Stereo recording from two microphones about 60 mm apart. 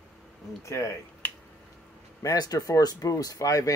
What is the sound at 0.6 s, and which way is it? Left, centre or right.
Speech, left.